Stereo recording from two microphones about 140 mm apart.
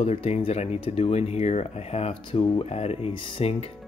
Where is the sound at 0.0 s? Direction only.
50° left (ahead or behind).